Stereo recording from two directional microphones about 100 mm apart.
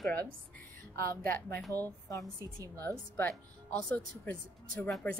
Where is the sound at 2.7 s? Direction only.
20° left (ahead or behind).